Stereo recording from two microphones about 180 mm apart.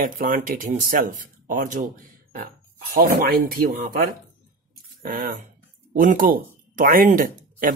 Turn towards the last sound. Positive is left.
turn(degrees=-50)  # may be behind; listen again after turning